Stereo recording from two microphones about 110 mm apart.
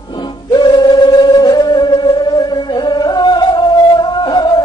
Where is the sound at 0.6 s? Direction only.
40° left (ahead or behind).